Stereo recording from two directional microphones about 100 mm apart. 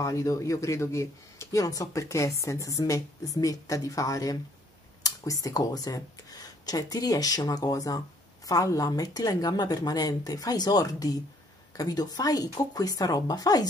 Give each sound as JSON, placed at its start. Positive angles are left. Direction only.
{"t": 0.0, "sound": "speech", "side_deg": 35}